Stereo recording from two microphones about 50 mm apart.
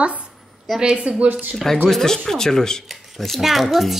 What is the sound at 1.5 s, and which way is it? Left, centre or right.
A child's voice, centre.